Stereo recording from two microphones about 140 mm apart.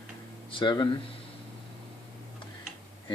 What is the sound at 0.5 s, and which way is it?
Speech, 35° left (ahead or behind).